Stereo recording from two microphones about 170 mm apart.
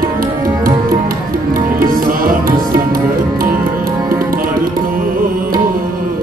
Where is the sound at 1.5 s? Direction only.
55° right (ahead or behind).